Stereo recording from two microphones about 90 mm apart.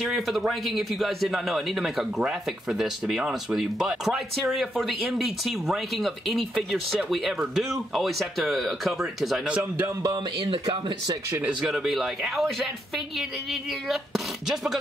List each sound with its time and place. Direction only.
0.0 s a man's voice: 5° right (ahead or behind)
11.7 s a man's voice: centre (ahead or behind)